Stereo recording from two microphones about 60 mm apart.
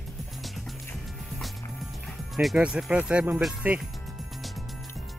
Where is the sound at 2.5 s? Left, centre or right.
Centre.